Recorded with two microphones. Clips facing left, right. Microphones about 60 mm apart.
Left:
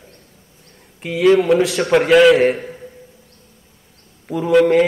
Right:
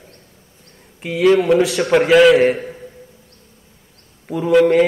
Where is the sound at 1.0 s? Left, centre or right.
Centre.